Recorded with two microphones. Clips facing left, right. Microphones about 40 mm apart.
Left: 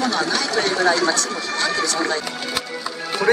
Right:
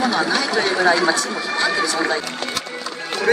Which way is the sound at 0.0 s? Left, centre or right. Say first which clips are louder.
Right 2 dB; centre.